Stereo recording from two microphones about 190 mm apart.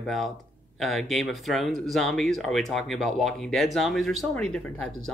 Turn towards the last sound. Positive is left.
turn(degrees=0)  # may be behind; listen again after turning